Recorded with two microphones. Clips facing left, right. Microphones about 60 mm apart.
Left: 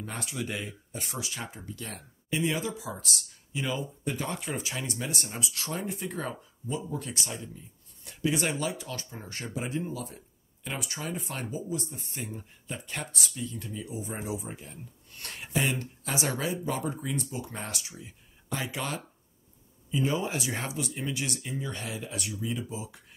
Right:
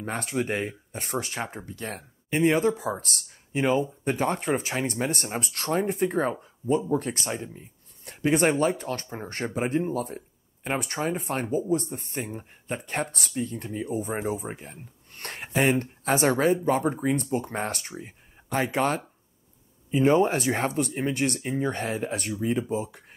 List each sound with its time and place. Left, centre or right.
0.0 s speech: right